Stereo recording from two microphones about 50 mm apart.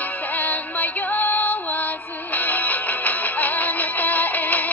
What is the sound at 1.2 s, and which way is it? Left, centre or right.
Music, left.